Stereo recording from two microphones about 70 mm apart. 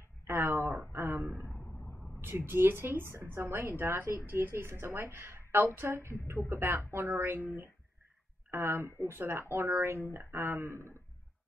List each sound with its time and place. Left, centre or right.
0.3 s a sound: right
1.5 s vehicle: left
2.2 s a woman's voice: right